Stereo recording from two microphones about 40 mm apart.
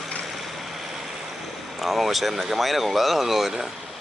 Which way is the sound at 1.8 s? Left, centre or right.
Centre.